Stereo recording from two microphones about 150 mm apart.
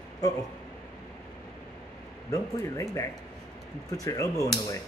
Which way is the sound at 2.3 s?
20° left (ahead or behind).